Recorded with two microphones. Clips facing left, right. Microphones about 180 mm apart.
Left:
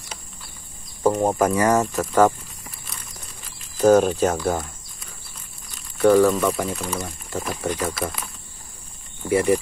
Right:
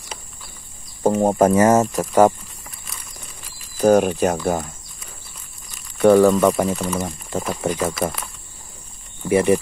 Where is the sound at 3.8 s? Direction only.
15° right (ahead or behind).